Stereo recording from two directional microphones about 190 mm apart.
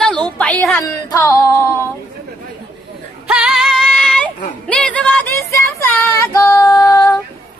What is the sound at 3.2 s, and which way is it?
Music, 5° right (ahead or behind).